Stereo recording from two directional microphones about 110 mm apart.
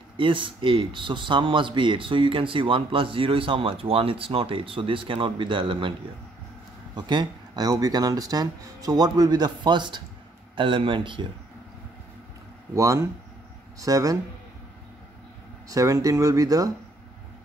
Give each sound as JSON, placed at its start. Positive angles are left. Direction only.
{"t": 0.2, "sound": "speech", "side_deg": -50}
{"t": 7.0, "sound": "speech", "side_deg": -40}
{"t": 12.7, "sound": "speech", "side_deg": -30}
{"t": 15.7, "sound": "speech", "side_deg": -30}